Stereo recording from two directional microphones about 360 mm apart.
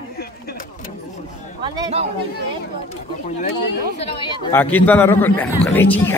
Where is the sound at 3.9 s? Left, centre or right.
Centre.